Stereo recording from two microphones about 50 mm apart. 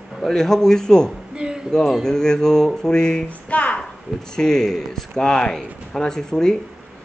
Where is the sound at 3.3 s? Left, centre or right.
Left.